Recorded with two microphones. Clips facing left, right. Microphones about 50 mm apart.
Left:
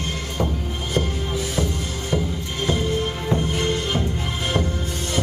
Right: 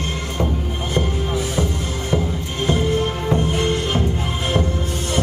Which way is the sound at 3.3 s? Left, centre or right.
Centre.